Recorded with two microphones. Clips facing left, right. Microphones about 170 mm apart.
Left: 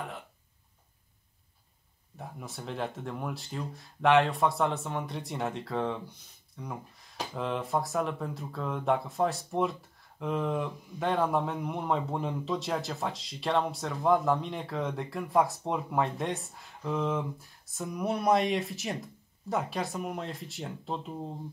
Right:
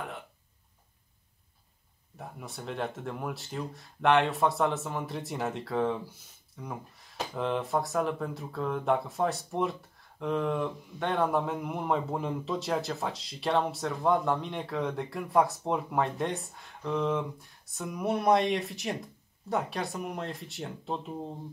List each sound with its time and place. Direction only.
2.1 s speech: centre (ahead or behind)